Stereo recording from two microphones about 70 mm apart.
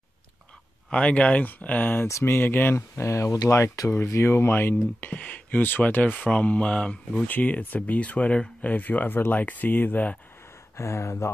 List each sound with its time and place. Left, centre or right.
0.8 s speech: centre
3.0 s speech: left
10.8 s speech: left